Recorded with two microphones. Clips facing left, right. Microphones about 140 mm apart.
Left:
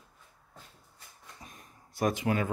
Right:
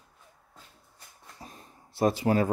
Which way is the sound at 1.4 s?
30° right (ahead or behind).